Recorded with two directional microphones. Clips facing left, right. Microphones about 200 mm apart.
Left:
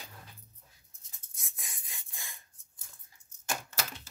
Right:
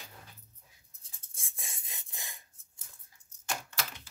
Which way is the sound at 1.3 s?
30° right (ahead or behind).